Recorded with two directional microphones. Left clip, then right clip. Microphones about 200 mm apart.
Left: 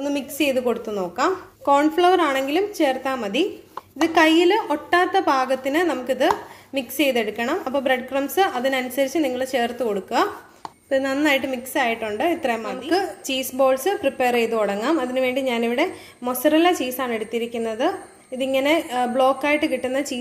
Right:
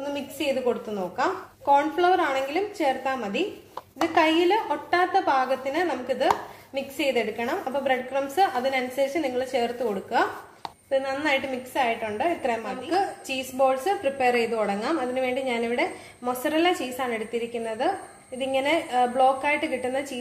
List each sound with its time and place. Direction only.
0.0 s a woman's voice: 45° left (ahead or behind)
10.9 s a woman's voice: 45° left (ahead or behind)